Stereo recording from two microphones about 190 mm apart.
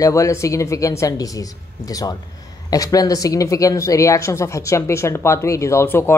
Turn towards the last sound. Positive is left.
turn(degrees=10)  # may be behind; listen again after turning